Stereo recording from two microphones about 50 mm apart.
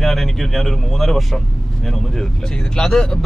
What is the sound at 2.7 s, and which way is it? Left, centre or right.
Speech, centre.